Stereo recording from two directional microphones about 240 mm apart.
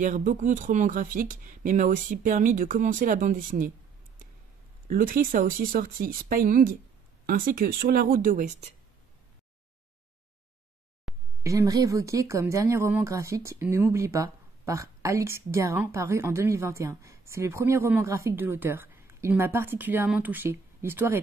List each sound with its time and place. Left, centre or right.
0.0 s speech: right
4.8 s speech: right
11.1 s a sound: centre
11.4 s speech: centre